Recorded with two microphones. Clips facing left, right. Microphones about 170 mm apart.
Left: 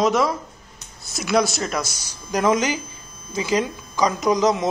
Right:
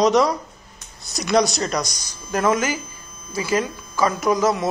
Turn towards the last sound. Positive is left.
turn(degrees=20)  # may be behind; listen again after turning